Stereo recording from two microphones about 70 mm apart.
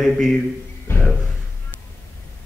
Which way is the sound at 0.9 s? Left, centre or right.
Left.